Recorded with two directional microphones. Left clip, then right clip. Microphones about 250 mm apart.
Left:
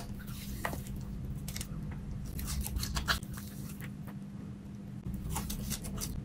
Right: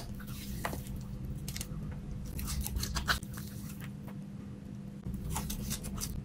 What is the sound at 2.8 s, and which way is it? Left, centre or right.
Biting, centre.